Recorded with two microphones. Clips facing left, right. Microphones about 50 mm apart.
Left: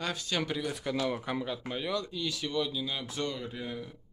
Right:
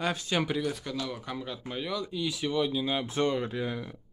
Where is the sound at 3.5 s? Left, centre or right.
Right.